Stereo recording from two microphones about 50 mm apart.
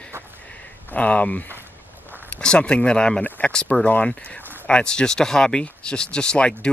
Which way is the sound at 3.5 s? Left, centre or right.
Centre.